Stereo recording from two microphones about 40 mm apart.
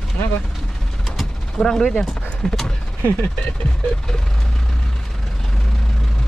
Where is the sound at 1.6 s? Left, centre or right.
Centre.